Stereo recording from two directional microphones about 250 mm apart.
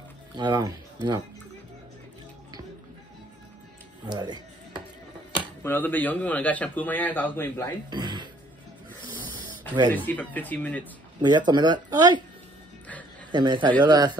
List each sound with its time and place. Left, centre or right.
0.4 s speech: centre
4.0 s speech: centre
5.6 s a man's voice: centre
7.9 s music: centre
9.9 s a man's voice: centre
11.1 s speech: centre
13.3 s speech: centre